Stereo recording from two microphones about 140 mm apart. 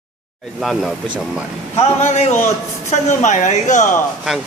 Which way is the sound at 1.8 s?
50° left (ahead or behind).